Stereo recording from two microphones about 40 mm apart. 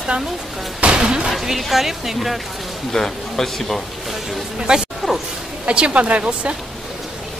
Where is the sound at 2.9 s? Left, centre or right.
Centre.